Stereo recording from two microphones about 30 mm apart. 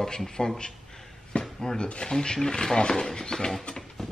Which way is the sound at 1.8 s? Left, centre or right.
Left.